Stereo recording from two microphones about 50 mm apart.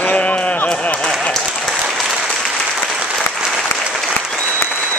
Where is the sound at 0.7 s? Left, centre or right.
Left.